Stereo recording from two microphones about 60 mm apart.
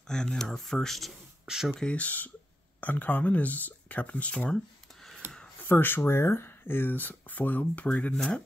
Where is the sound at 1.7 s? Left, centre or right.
Left.